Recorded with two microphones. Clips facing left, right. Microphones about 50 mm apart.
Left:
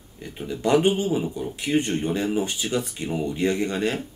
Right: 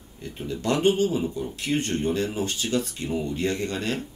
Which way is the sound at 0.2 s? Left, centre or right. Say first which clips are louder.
Left 3 dB; centre.